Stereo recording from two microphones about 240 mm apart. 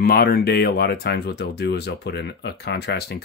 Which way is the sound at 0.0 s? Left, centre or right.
Left.